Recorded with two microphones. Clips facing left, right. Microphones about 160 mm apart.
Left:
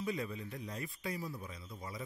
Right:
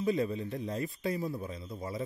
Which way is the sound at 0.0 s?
30° right (ahead or behind).